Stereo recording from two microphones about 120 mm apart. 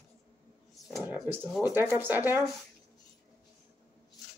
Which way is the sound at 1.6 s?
15° right (ahead or behind).